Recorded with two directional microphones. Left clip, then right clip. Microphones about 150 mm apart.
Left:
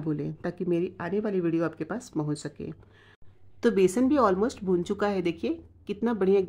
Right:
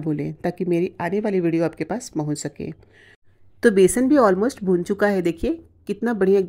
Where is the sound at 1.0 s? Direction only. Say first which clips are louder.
Right 7 dB; 20° right (ahead or behind).